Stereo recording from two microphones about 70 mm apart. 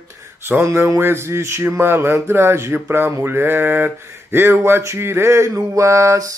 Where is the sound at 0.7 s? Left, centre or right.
Right.